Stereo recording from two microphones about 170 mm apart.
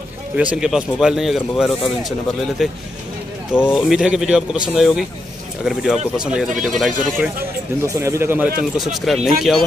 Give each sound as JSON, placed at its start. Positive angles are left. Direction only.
{"t": 0.4, "sound": "speech", "side_deg": -5}
{"t": 7.8, "sound": "a man's voice", "side_deg": -20}
{"t": 8.7, "sound": "speech", "side_deg": 0}